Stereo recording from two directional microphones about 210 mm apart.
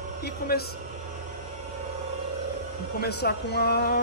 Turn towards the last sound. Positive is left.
turn(degrees=50)  # may be behind; listen again after turning